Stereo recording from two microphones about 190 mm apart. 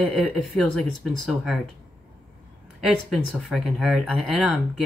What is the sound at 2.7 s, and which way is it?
Speech, centre (ahead or behind).